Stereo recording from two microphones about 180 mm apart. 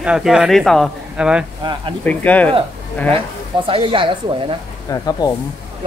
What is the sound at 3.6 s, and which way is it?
Speech, 30° right (ahead or behind).